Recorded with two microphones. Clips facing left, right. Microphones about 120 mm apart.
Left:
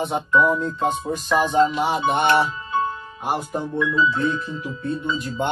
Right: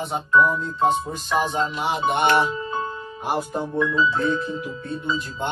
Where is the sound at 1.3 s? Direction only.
45° left (ahead or behind).